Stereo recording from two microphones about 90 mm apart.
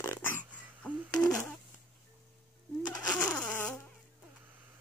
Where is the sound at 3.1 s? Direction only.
10° left (ahead or behind).